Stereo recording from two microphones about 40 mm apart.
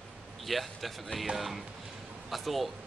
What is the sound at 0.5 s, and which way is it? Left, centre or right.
Speech, centre.